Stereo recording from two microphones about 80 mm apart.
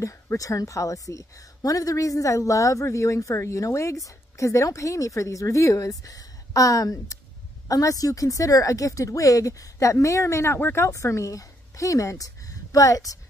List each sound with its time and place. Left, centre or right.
0.0 s a woman's voice: left